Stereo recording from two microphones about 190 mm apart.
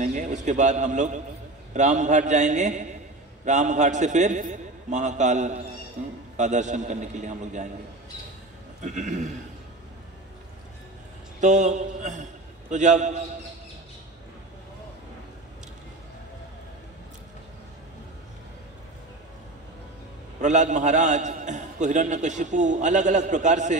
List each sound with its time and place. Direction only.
0.0 s a man's voice: 40° right (ahead or behind)
8.8 s a man's voice: 40° right (ahead or behind)
11.4 s a man's voice: 40° right (ahead or behind)
20.3 s a man's voice: 40° right (ahead or behind)